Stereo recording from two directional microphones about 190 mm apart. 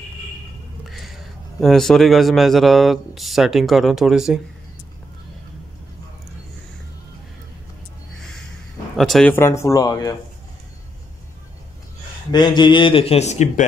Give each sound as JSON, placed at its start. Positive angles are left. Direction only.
{"t": 0.8, "sound": "speech", "side_deg": 0}
{"t": 8.9, "sound": "a man's voice", "side_deg": 0}
{"t": 12.3, "sound": "speech", "side_deg": 20}